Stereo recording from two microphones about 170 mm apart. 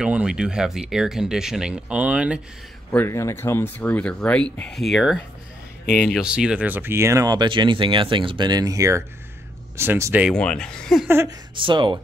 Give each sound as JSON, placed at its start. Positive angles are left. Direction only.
{"t": 0.0, "sound": "speech", "side_deg": -5}
{"t": 2.9, "sound": "speech", "side_deg": 15}
{"t": 10.3, "sound": "speech", "side_deg": 5}
{"t": 11.1, "sound": "speech", "side_deg": -15}
{"t": 11.5, "sound": "speech", "side_deg": -30}